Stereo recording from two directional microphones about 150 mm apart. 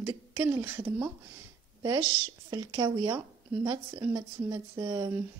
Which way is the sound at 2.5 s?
25° right (ahead or behind).